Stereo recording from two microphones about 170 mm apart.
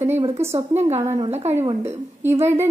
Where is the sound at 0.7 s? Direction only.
40° right (ahead or behind).